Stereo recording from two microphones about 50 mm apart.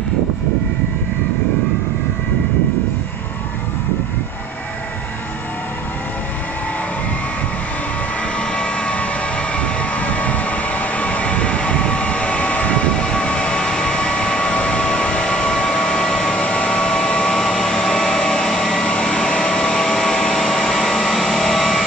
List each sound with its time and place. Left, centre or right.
8.4 s vehicle: left; by 21.8 s centre